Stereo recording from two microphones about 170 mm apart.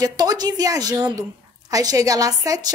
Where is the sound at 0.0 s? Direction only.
20° right (ahead or behind).